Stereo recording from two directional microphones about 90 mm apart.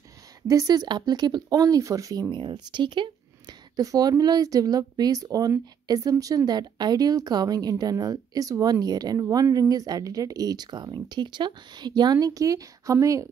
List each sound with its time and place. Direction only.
0.5 s speech: 45° right (ahead or behind)
2.3 s speech: 60° right (ahead or behind); by 13.3 s 35° right (ahead or behind)